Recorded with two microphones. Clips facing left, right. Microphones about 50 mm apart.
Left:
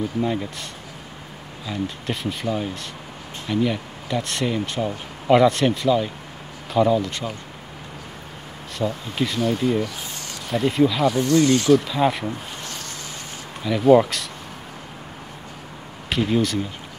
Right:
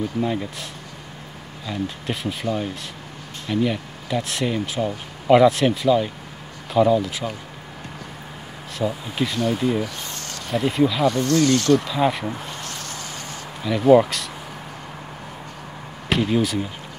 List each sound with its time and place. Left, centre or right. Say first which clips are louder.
0.2 s speech: even; centre
1.7 s speech: even; centre
8.7 s speech: even; centre
11.2 s speech: left 1 dB; centre
11.7 s speech: left 1 dB; centre
13.7 s speech: even; centre
16.1 s speech: right 1 dB; centre